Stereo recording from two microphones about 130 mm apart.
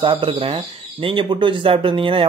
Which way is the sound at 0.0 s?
40° right (ahead or behind).